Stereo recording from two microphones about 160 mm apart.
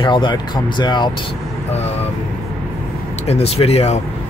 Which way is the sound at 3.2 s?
40° left (ahead or behind).